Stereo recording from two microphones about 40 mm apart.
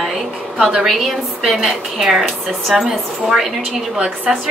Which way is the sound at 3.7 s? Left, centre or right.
Right.